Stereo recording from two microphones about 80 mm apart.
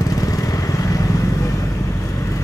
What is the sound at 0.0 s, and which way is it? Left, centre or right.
Vehicle, left.